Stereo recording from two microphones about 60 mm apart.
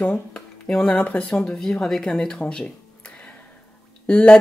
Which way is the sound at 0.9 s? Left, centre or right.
Left.